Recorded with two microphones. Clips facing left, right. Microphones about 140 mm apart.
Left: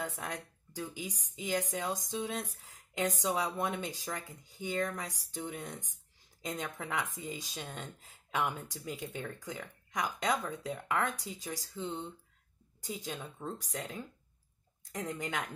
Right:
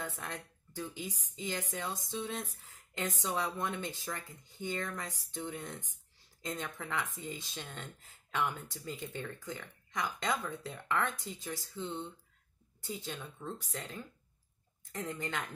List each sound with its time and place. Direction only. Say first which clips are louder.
0.0 s a woman's voice: left 3 dB; 15° left (ahead or behind)